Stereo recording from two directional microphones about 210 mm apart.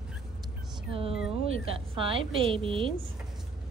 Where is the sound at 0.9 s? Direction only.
25° right (ahead or behind).